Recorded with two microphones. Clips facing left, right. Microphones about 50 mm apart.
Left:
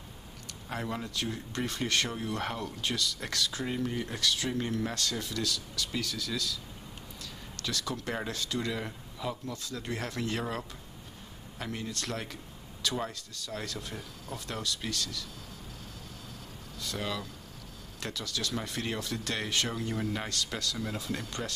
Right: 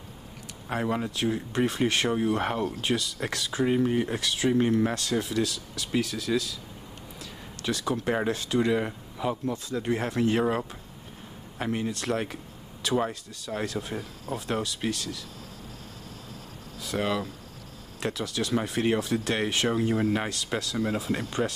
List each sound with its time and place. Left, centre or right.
0.7 s speech: right
7.6 s speech: right
17.0 s speech: right